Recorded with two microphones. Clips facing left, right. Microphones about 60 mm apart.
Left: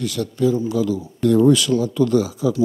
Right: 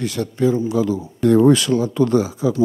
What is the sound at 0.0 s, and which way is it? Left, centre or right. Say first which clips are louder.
Speech: right 1 dB; right.